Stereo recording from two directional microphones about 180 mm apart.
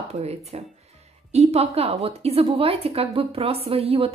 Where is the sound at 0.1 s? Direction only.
35° right (ahead or behind).